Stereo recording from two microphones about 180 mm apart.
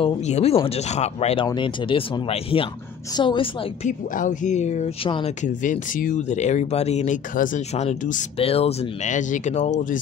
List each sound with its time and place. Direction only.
0.0 s a woman's voice: 35° left (ahead or behind)
3.8 s speech: 45° left (ahead or behind)
5.4 s speech: 45° left (ahead or behind)